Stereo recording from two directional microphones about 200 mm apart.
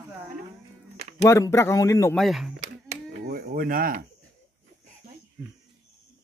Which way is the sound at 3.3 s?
50° right (ahead or behind).